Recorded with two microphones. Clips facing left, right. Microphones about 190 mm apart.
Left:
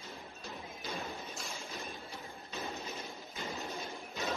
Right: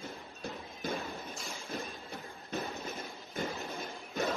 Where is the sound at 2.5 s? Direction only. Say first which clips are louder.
Right 4 dB; 50° right (ahead or behind).